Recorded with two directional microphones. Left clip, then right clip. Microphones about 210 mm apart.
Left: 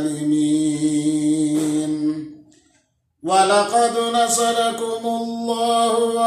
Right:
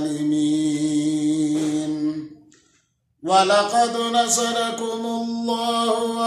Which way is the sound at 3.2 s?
20° right (ahead or behind).